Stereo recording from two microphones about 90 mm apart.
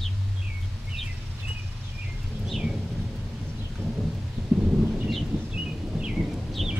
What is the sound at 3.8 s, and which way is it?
Thunder, 25° right (ahead or behind).